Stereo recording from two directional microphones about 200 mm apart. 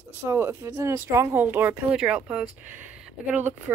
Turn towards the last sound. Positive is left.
turn(degrees=-5)  # may be behind; listen again after turning